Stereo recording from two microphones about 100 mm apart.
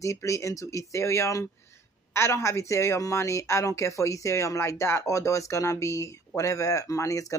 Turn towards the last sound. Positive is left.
turn(degrees=30)  # may be behind; listen again after turning